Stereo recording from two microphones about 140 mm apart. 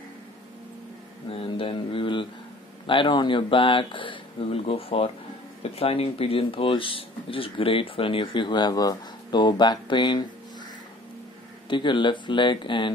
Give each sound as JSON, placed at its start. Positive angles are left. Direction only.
{"t": 1.3, "sound": "speech", "side_deg": 40}
{"t": 11.7, "sound": "speech", "side_deg": 35}